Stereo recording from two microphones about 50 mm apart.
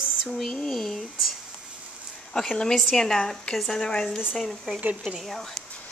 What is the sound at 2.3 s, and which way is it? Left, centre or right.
Speech, centre.